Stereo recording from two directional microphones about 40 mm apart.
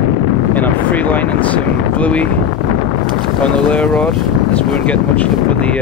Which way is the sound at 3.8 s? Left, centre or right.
Centre.